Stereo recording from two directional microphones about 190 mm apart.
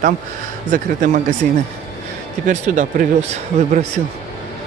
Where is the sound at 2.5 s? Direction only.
40° right (ahead or behind).